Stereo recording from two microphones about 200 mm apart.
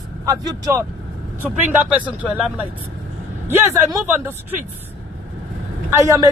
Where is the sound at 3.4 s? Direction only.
15° right (ahead or behind).